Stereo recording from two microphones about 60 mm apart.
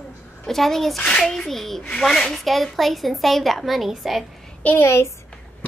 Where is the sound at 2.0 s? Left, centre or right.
Centre.